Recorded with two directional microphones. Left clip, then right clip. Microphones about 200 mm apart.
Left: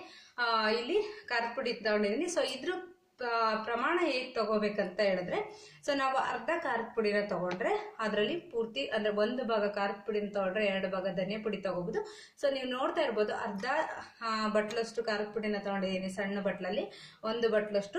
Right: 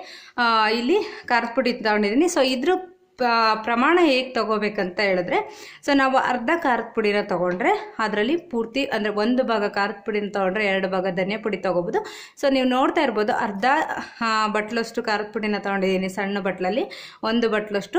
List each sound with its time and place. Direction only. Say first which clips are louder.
0.4 s speech: right 11 dB; 45° right (ahead or behind)